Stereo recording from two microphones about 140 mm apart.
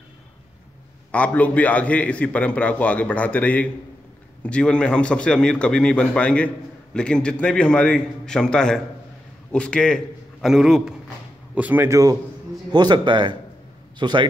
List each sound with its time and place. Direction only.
1.1 s a man's voice: 10° left (ahead or behind); by 14.2 s 35° right (ahead or behind)